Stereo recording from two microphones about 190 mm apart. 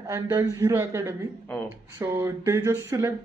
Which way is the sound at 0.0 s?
15° right (ahead or behind).